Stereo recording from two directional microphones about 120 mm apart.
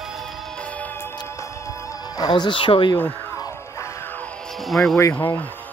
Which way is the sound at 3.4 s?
25° left (ahead or behind).